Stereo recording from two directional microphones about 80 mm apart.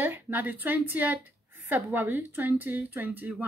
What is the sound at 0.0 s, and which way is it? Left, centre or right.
Speech, right.